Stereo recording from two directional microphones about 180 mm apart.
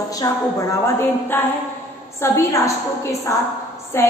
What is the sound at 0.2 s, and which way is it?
A woman's voice, 20° left (ahead or behind).